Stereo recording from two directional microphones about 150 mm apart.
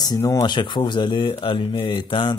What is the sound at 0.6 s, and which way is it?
Speech, 30° left (ahead or behind).